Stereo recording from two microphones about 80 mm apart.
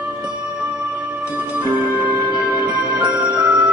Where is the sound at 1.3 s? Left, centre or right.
Centre.